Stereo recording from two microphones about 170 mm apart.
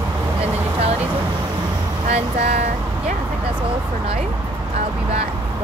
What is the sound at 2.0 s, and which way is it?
Speech, 40° right (ahead or behind).